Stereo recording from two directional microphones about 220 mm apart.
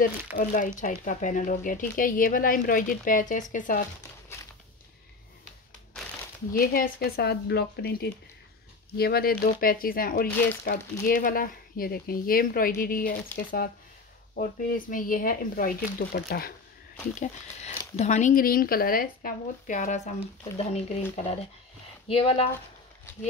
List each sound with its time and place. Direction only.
0.4 s speech: 35° left (ahead or behind)
4.3 s walk: 10° left (ahead or behind)
6.5 s speech: 40° left (ahead or behind)
17.1 s speech: 30° left (ahead or behind)